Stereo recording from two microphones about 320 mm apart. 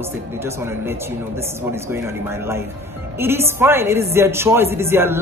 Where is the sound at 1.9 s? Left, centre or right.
Centre.